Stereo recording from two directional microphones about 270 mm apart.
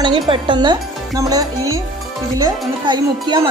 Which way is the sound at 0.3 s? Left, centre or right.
Centre.